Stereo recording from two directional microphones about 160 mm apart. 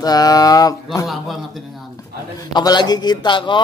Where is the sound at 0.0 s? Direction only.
25° left (ahead or behind).